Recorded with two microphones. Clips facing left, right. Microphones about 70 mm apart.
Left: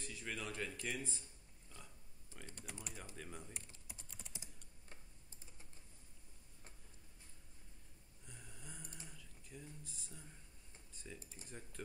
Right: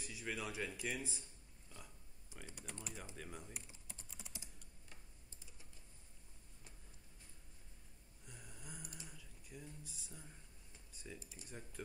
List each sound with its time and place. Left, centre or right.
0.0 s speech: centre
2.3 s typing: centre
2.6 s typing: centre
3.2 s speech: centre
4.2 s typing: centre
8.3 s snoring: centre
9.1 s a sound: centre
11.1 s speech: left
11.4 s speech: centre